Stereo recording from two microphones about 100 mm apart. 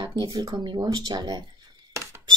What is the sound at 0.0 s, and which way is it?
Speech, 45° right (ahead or behind).